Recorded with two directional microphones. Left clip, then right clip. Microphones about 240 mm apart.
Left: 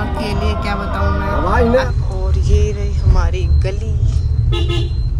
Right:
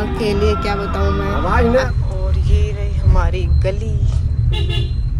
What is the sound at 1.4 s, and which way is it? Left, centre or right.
Speech, left.